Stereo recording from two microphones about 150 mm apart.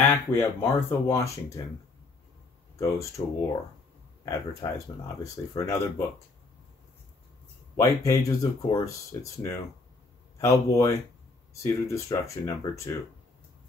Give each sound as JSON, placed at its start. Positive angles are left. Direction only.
{"t": 0.0, "sound": "speech", "side_deg": 15}
{"t": 3.2, "sound": "speech", "side_deg": 35}
{"t": 4.2, "sound": "speech", "side_deg": 20}
{"t": 7.7, "sound": "speech", "side_deg": 20}